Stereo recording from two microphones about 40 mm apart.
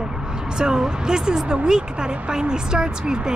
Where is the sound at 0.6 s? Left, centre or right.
Centre.